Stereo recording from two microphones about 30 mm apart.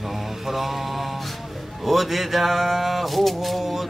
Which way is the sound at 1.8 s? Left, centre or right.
Centre.